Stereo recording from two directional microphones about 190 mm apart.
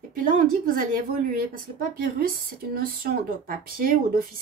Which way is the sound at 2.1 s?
50° right (ahead or behind).